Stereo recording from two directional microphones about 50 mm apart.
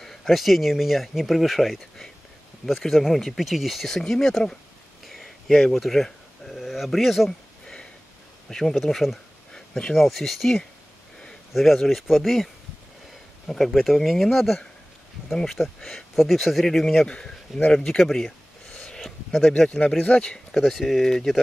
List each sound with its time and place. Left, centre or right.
0.0 s speech: centre
5.0 s a sound: centre
6.0 s speech: centre
7.2 s a sound: centre
8.5 s speech: centre
9.5 s a sound: centre
9.9 s speech: centre
13.5 s speech: centre
17.7 s a sound: centre
19.0 s speech: centre
20.1 s speech: centre
20.5 s speech: centre